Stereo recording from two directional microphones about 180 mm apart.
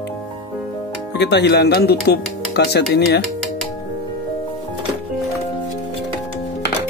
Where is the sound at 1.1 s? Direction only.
70° left (ahead or behind).